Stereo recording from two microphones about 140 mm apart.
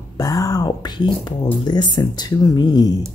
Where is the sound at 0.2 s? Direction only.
25° left (ahead or behind).